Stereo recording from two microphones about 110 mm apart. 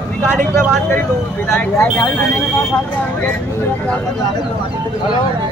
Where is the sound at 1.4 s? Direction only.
20° left (ahead or behind).